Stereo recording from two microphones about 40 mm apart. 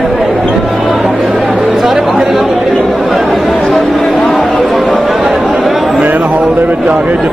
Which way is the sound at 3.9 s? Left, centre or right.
Centre.